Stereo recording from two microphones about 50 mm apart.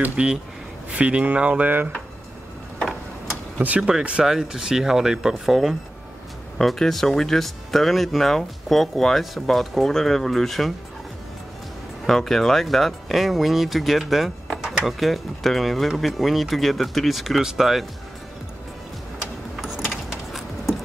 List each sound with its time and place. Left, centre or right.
0.1 s speech: right
3.6 s speech: right
4.2 s speech: centre
12.1 s speech: centre
19.5 s a sound: centre